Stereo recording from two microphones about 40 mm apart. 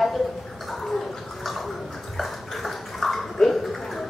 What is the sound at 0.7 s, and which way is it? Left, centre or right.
Gargling, centre.